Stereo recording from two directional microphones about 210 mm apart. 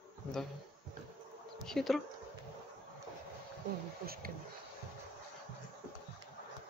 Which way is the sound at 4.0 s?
45° right (ahead or behind).